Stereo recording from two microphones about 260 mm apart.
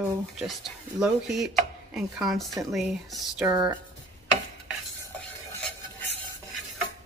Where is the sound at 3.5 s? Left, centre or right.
Centre.